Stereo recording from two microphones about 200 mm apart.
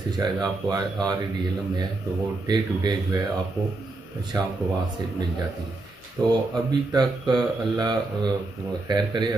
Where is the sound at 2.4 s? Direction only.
20° right (ahead or behind).